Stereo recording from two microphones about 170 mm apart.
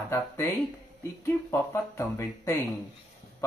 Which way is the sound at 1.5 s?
15° left (ahead or behind).